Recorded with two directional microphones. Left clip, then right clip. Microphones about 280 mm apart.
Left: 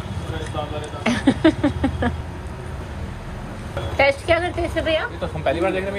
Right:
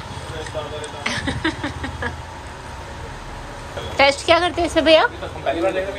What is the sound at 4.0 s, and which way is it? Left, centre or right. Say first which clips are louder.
A woman's voice: right 3 dB; centre.